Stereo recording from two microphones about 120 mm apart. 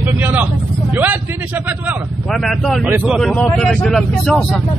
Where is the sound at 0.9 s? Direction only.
15° right (ahead or behind).